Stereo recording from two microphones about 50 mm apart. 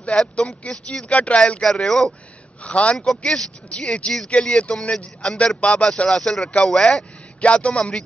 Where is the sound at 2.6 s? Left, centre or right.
Left.